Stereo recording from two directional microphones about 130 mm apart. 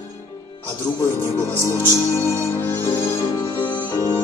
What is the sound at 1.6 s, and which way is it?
Music, 20° left (ahead or behind).